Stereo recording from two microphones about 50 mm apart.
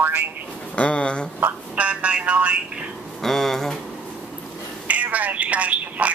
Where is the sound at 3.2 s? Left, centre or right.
Centre.